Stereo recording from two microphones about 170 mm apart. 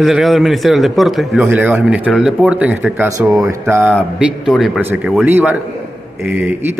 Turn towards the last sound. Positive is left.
turn(degrees=-10)  # may be behind; listen again after turning